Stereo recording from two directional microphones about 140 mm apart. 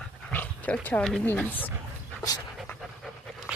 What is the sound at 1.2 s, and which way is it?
Speech, 10° left (ahead or behind).